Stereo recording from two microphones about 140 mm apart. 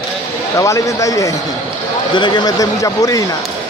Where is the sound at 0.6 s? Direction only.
25° left (ahead or behind).